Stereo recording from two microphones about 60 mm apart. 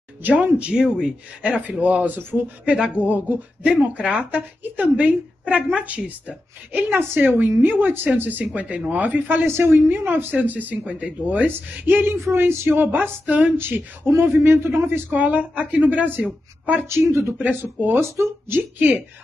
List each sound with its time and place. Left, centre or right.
0.2 s speech: right
1.4 s speech: right
2.6 s speech: centre; by 13.1 s right
13.2 s speech: right
13.6 s speech: right
16.8 s speech: right
17.4 s speech: right
18.0 s speech: right